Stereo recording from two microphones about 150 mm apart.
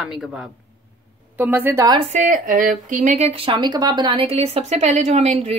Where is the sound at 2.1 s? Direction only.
60° right (ahead or behind).